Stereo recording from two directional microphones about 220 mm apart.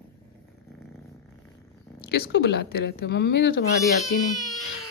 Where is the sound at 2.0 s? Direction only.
45° left (ahead or behind).